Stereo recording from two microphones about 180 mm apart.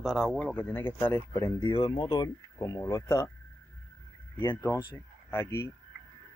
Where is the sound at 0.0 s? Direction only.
Centre (ahead or behind); by 3.3 s 20° left (ahead or behind).